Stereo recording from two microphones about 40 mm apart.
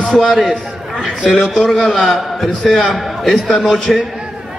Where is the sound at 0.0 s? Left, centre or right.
Centre.